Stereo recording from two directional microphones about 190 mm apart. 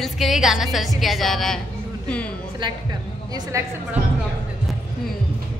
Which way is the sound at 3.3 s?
15° right (ahead or behind).